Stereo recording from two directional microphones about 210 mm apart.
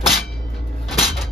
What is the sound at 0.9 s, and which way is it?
Cupboard open or close, centre (ahead or behind).